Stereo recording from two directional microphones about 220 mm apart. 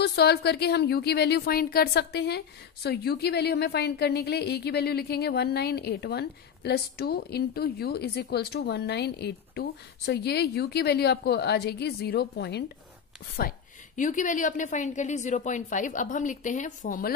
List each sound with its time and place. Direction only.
0.0 s a woman's voice: 50° left (ahead or behind)